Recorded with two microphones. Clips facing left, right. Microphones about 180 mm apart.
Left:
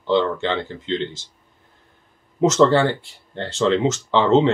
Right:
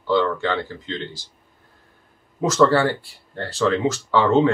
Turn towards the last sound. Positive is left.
turn(degrees=25)  # may be behind; listen again after turning